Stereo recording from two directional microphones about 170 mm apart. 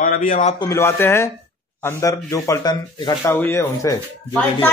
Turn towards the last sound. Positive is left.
turn(degrees=15)  # may be behind; listen again after turning